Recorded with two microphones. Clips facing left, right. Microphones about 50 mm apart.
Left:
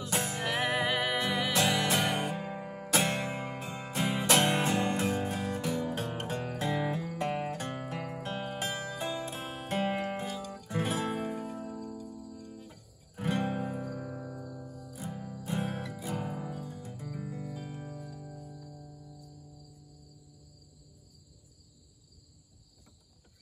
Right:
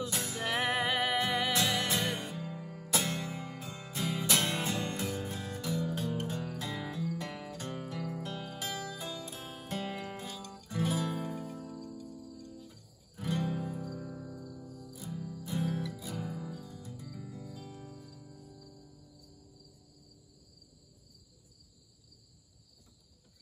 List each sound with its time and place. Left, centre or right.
0.0 s music: left
10.2 s music: centre
10.7 s music: left